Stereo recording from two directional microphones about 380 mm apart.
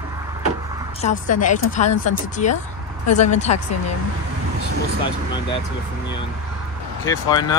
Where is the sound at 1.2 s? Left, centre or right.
Centre.